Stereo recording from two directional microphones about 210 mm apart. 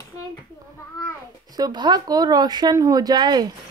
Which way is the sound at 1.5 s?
20° right (ahead or behind).